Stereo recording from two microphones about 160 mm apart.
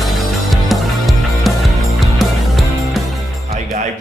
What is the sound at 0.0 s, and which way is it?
Music, centre (ahead or behind).